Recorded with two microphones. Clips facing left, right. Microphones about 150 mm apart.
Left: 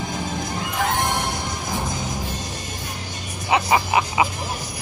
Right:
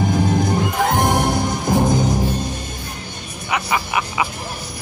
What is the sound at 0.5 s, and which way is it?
Music, 45° right (ahead or behind).